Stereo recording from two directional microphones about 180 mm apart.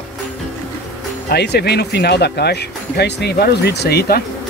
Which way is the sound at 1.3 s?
65° left (ahead or behind).